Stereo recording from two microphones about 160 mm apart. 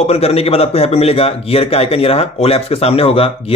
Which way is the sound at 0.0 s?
40° left (ahead or behind).